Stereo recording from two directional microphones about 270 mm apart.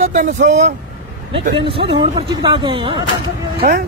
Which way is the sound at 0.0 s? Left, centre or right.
Right.